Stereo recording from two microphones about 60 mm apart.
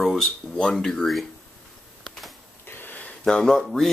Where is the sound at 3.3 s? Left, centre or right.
Centre.